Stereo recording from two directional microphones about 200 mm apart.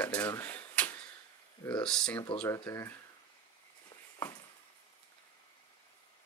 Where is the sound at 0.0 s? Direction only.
5° left (ahead or behind).